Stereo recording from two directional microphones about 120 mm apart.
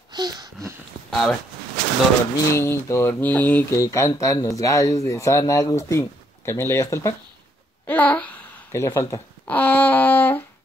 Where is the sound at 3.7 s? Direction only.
25° left (ahead or behind).